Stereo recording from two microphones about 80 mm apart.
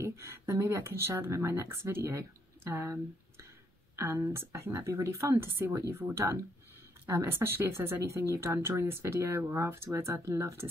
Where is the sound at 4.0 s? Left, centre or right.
Right.